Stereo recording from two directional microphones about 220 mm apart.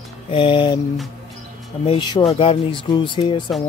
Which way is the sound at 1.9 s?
20° left (ahead or behind).